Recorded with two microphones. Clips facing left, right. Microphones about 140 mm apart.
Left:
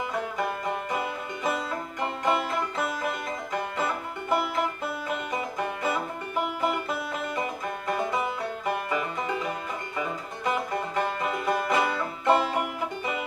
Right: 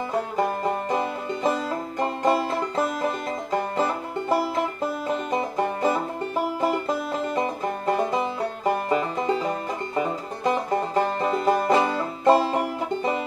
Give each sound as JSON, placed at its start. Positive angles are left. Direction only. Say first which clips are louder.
{"t": 0.1, "sound": "music", "louder": "right 5 dB", "side_deg": -35}